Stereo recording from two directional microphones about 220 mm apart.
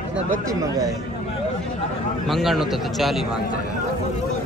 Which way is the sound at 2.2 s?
Centre (ahead or behind).